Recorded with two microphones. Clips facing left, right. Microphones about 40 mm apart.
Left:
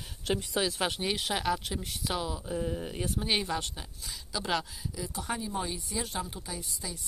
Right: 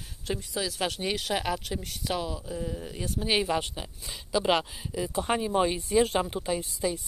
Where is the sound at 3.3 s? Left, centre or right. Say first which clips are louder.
Right 6 dB; centre; by 5.3 s right.